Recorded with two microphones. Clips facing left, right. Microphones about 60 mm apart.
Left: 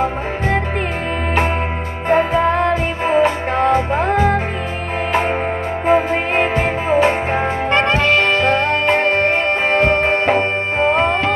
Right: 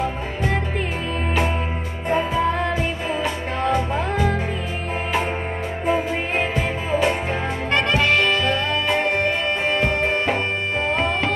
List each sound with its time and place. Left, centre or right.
2.0 s music: left
3.1 s music: left
5.9 s music: left